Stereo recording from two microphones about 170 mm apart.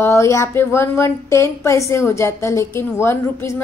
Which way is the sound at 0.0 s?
15° left (ahead or behind).